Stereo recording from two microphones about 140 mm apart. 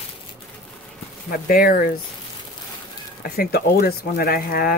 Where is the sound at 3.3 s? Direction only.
90° left.